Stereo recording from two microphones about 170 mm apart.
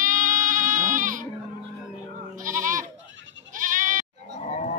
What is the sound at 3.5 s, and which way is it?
Bleat, 50° right (ahead or behind).